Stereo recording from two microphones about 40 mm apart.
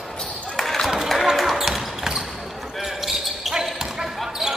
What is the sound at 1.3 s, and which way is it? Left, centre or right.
Basketball bounce, centre.